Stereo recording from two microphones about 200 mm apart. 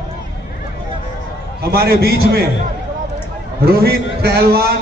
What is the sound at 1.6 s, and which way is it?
Speech, 50° right (ahead or behind).